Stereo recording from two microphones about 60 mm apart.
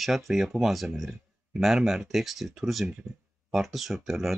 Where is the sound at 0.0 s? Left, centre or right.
Centre.